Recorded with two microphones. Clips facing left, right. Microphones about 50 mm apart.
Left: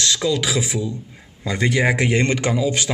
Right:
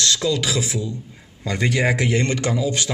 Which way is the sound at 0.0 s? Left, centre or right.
Centre.